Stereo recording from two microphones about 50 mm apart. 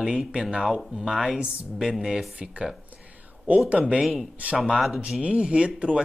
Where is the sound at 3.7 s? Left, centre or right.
Right.